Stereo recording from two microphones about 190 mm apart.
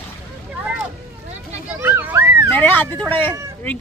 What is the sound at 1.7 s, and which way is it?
Children playing, 10° right (ahead or behind).